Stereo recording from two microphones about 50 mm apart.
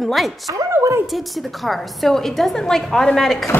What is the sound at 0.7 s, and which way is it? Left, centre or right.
Speech, right.